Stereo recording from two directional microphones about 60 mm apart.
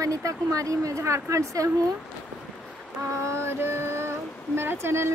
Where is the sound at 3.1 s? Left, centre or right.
Right.